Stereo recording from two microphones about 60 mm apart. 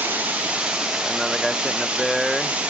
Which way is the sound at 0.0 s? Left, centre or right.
Right.